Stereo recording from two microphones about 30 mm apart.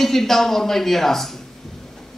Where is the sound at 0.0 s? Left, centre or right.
Centre.